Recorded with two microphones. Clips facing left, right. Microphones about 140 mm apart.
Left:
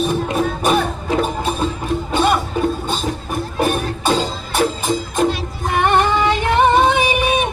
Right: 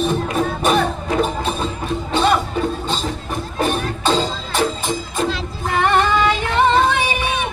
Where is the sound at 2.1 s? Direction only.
10° left (ahead or behind).